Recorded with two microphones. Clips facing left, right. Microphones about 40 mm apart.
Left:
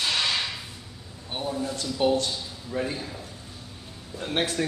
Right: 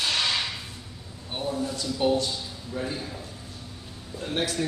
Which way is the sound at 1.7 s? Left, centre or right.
Left.